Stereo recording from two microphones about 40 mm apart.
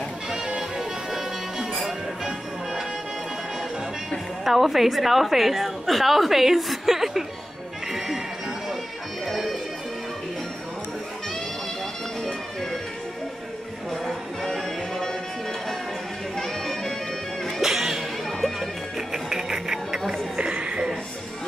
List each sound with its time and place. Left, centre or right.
0.3 s music: centre
4.5 s a woman's voice: centre
9.2 s bagpipes: centre
14.4 s music: centre
16.3 s music: centre
17.6 s music: centre
20.1 s a sound: centre